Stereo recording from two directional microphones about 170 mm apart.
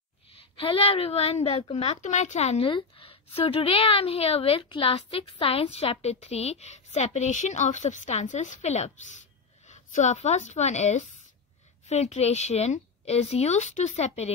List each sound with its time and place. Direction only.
0.6 s a woman's voice: 35° left (ahead or behind)